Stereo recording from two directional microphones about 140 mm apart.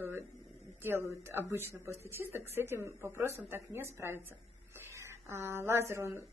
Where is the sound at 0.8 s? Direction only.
15° right (ahead or behind).